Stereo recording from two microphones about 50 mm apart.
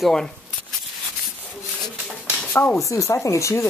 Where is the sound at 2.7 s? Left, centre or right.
Left.